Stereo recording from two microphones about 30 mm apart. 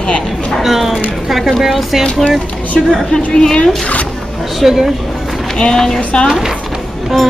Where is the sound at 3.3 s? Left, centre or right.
Left.